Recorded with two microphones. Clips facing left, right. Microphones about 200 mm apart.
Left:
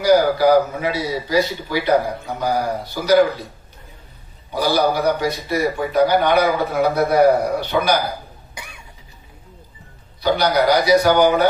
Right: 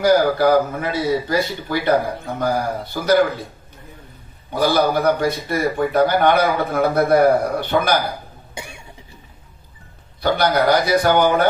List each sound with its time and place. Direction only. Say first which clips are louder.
0.0 s a man's voice: left 1 dB; 55° right (ahead or behind)
4.6 s a man's voice: right 1 dB; 50° right (ahead or behind)
8.5 s cough: right 5 dB; 25° right (ahead or behind)
10.2 s a man's voice: even; 55° right (ahead or behind)